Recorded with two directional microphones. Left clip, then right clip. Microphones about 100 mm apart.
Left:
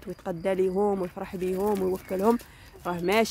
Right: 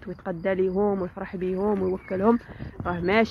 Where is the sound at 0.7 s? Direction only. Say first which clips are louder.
Right 1 dB; 20° left (ahead or behind).